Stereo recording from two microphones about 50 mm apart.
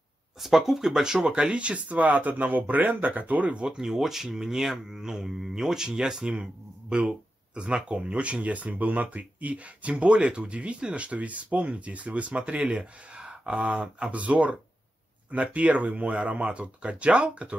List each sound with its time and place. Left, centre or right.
0.4 s speech: centre; by 3.6 s right
3.6 s speech: centre; by 17.6 s right